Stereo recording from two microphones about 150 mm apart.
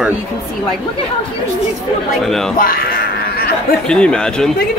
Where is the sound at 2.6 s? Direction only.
75° left (ahead or behind).